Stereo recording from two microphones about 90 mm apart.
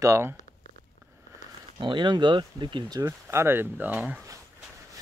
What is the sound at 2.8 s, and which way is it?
Speech, 45° right (ahead or behind).